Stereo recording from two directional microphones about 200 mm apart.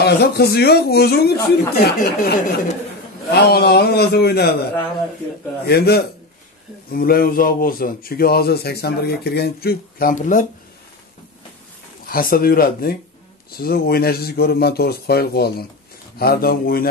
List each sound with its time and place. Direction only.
0.0 s speech: 55° left (ahead or behind)
5.7 s speech: 50° left (ahead or behind)
12.1 s speech: 45° left (ahead or behind)